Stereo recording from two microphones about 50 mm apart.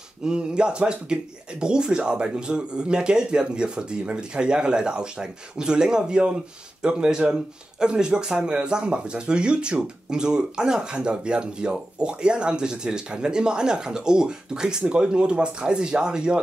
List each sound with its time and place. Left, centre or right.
0.2 s speech: centre